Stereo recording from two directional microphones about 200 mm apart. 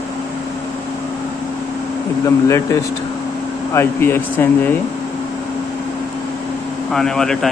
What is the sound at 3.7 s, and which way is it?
Speech, 10° left (ahead or behind).